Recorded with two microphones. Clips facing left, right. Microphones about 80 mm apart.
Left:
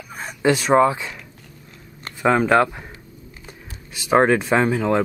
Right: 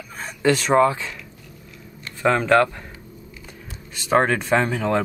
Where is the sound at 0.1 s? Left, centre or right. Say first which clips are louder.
Left 1 dB; centre.